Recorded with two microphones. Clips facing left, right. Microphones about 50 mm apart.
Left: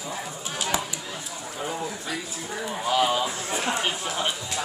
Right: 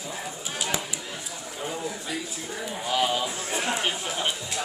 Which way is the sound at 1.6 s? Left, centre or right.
Centre.